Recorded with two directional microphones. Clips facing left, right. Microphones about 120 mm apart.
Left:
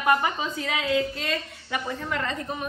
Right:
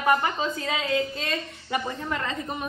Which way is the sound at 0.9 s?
Centre (ahead or behind).